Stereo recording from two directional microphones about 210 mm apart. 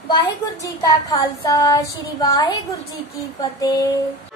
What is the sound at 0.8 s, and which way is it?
Child singing, 20° left (ahead or behind).